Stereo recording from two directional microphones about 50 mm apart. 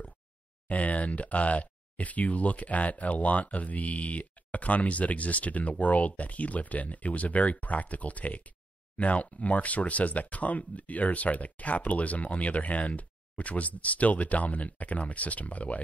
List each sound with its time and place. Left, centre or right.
0.7 s speech: left